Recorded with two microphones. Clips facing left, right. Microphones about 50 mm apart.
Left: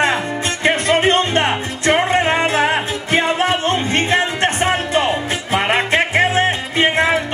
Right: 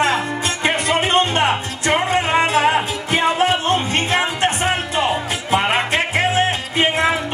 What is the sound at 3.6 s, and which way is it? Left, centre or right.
Music, left.